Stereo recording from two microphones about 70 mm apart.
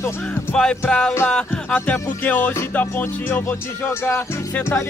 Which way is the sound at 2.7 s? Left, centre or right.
Left.